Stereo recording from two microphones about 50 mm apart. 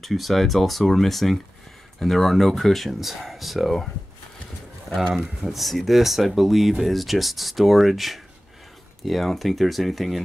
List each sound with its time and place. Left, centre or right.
0.0 s speech: centre
4.8 s speech: centre